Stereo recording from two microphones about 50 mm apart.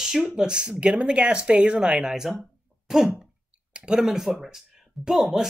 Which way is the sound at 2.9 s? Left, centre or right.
Centre.